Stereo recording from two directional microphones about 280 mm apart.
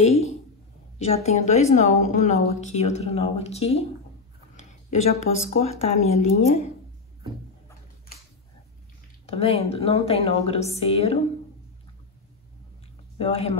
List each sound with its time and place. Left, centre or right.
0.0 s a sound: left
0.9 s a woman's voice: left
5.1 s a woman's voice: left
9.2 s a woman's voice: left
13.2 s a woman's voice: left